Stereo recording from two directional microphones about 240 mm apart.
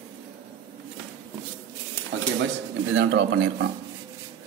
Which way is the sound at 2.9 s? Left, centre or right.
Right.